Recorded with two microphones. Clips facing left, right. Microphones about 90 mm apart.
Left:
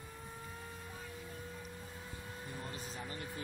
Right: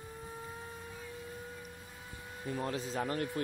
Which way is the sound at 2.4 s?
80° right.